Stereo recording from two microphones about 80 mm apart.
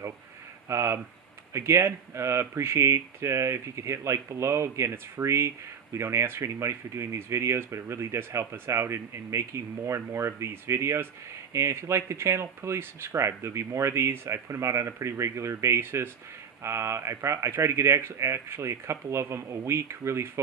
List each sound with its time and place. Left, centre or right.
0.7 s speech: right